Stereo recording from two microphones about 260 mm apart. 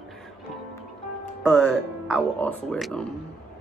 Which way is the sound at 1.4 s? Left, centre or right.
Centre.